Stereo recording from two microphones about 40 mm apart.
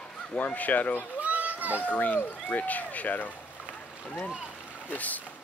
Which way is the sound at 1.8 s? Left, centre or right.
Left.